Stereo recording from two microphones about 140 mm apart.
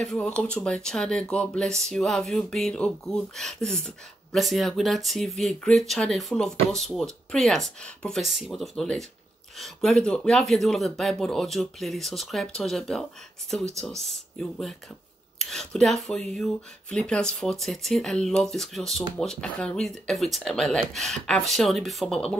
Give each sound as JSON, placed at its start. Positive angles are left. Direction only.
{"t": 0.0, "sound": "speech", "side_deg": 5}